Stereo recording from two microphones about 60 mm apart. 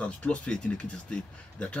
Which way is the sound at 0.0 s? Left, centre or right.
Centre.